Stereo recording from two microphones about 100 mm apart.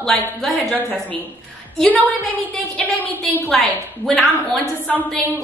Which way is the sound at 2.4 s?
15° left (ahead or behind).